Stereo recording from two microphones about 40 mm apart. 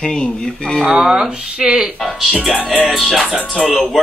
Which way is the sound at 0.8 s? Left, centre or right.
Right.